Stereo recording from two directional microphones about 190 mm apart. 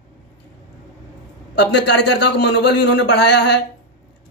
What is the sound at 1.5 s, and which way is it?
A man's voice, 65° left (ahead or behind).